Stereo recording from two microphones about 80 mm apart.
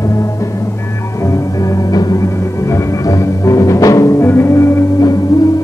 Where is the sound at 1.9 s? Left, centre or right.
Left.